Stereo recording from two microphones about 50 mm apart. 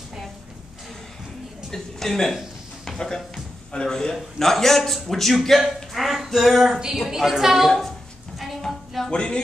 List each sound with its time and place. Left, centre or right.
1.7 s a woman's voice: centre
8.4 s music: centre
9.1 s speech: left